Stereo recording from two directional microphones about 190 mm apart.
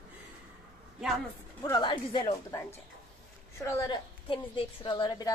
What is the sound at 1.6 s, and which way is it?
A woman's voice, 20° left (ahead or behind).